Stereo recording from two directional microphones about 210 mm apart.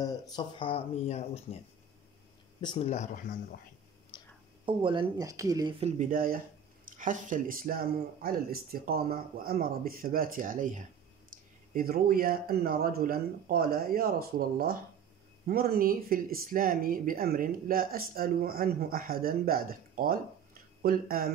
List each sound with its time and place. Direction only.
0.0 s speech: 20° left (ahead or behind)
2.6 s speech: 25° left (ahead or behind)
4.1 s whispering: 20° left (ahead or behind)
4.6 s speech: 25° right (ahead or behind); by 21.3 s 45° right (ahead or behind)